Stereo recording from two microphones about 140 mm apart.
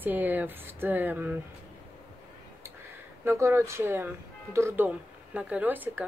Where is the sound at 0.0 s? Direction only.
15° right (ahead or behind).